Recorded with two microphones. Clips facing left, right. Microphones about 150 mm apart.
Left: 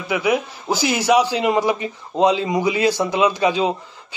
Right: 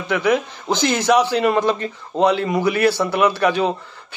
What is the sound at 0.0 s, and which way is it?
A man's voice, 10° left (ahead or behind).